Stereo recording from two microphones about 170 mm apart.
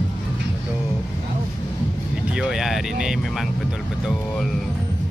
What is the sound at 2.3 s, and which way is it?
Speech, centre (ahead or behind).